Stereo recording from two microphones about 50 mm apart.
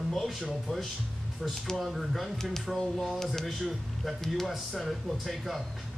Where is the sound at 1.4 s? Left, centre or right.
Centre.